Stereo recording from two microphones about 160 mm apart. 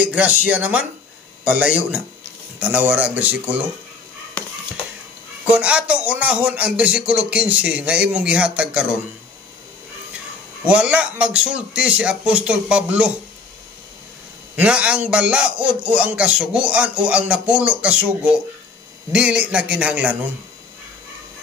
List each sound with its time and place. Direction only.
0.0 s a man's voice: 10° right (ahead or behind)
5.5 s a man's voice: 5° right (ahead or behind)
10.6 s a man's voice: 10° right (ahead or behind)
14.5 s a man's voice: 10° right (ahead or behind)